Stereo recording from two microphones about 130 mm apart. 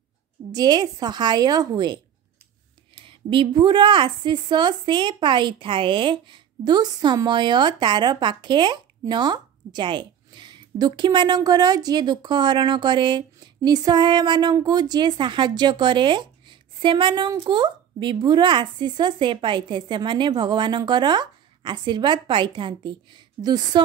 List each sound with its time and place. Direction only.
0.5 s speech: 30° right (ahead or behind)
3.0 s speech: 40° right (ahead or behind)